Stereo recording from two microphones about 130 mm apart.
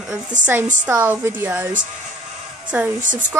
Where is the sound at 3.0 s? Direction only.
80° right.